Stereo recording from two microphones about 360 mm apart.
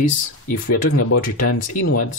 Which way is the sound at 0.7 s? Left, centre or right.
Left.